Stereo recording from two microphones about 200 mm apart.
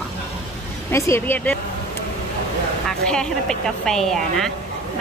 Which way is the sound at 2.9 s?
5° left (ahead or behind).